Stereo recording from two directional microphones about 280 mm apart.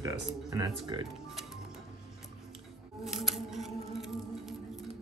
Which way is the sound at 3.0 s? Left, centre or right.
Centre.